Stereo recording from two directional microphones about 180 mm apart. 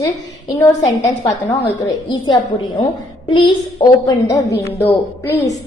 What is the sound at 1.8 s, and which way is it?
A woman's voice, 25° left (ahead or behind).